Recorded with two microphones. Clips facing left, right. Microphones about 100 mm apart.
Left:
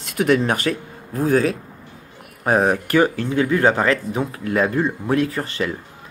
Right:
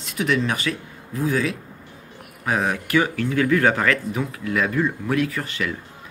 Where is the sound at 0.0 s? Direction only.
50° left (ahead or behind).